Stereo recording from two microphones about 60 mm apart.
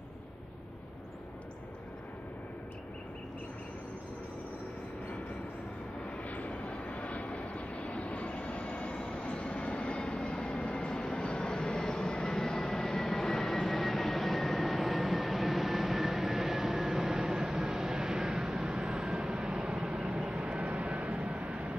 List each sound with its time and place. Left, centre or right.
6.2 s vehicle: left
10.5 s vehicle: centre